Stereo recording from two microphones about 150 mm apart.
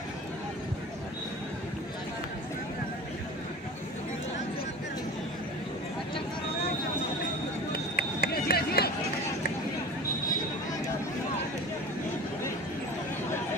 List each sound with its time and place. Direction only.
7.9 s run: 90° left